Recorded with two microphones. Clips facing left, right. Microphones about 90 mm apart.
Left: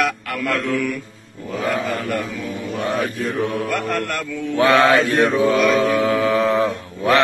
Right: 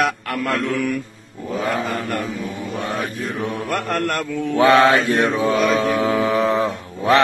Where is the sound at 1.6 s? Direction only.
30° right (ahead or behind).